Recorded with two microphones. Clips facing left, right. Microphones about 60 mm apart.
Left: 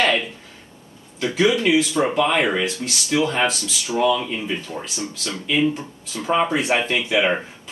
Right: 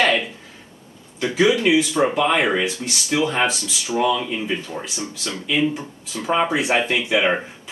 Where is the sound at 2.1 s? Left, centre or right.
Centre.